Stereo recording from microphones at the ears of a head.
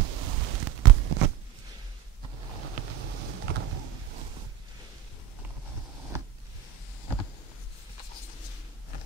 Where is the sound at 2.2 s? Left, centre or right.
Right.